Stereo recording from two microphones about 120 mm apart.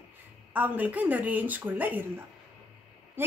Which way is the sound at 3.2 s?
15° right (ahead or behind).